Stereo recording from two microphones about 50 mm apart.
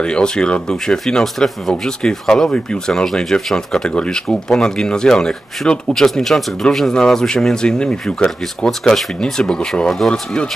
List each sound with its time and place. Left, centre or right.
0.0 s speech: centre
0.9 s speech: centre
5.9 s speech: centre